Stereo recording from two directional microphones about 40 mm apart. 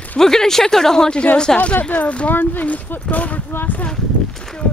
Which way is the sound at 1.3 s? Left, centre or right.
Left.